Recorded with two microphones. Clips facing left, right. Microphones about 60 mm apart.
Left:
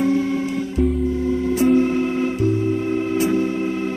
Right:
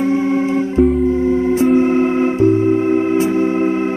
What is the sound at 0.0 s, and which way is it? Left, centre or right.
Music, right.